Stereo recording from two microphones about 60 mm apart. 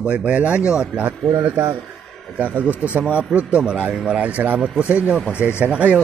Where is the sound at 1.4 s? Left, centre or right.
Right; by 4.2 s centre.